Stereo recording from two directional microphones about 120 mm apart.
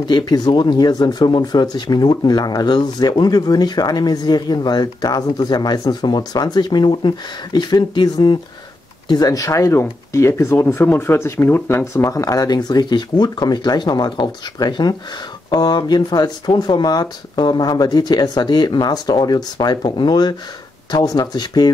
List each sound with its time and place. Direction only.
0.0 s speech: 40° left (ahead or behind)